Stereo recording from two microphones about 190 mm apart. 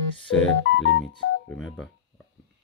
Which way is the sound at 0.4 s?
85° left.